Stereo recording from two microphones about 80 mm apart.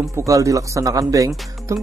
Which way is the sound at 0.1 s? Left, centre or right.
Right.